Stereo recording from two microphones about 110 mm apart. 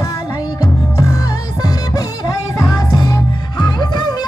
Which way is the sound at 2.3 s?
35° left (ahead or behind).